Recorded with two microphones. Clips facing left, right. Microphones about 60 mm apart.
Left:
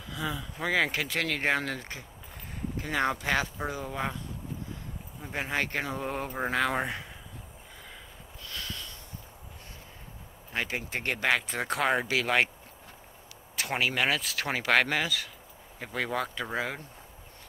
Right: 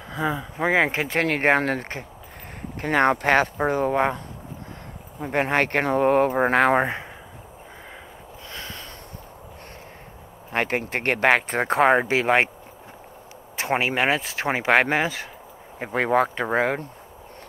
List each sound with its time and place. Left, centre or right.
0.1 s speech: right
5.2 s speech: right
8.5 s a sound: right
10.5 s speech: right
13.6 s speech: right